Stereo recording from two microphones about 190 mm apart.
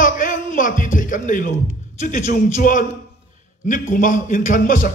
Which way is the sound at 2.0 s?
40° left (ahead or behind).